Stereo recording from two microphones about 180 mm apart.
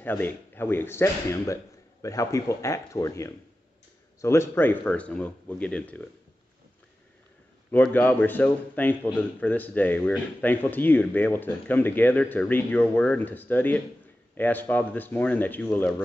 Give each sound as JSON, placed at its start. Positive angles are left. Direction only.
{"t": 0.0, "sound": "a man's voice", "side_deg": 10}
{"t": 7.7, "sound": "a man's voice", "side_deg": 10}